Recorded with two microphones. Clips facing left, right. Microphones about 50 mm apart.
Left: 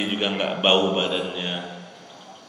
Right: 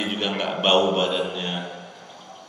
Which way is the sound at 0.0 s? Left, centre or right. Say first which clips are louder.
Left 1 dB; centre.